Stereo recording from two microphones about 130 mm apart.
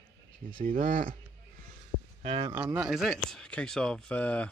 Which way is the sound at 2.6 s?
10° right (ahead or behind).